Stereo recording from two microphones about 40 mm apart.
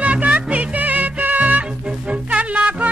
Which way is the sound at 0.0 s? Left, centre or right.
Right.